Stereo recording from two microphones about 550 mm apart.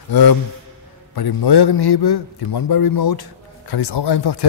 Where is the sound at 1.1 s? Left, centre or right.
Left.